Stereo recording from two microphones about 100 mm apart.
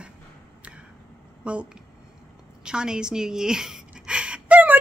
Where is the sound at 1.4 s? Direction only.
10° right (ahead or behind).